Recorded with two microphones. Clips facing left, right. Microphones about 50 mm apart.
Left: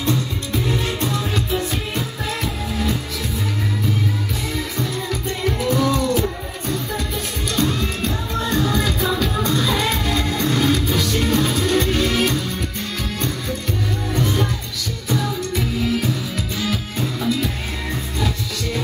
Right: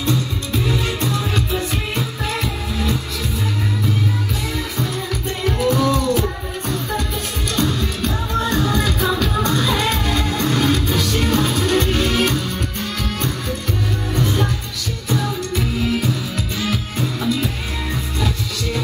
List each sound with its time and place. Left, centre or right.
1.3 s music: right
5.4 s music: right
7.5 s music: right
16.6 s music: right